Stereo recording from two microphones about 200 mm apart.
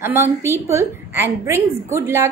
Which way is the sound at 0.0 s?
10° right (ahead or behind).